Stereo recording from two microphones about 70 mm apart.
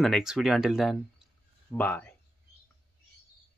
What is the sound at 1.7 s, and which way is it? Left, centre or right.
Speech, left.